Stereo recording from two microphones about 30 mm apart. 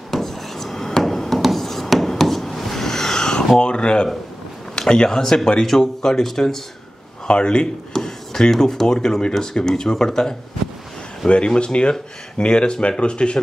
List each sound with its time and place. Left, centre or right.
0.1 s a sound: centre
3.5 s speech: left
5.2 s speech: centre
7.2 s speech: left
7.9 s speech: centre
11.2 s speech: left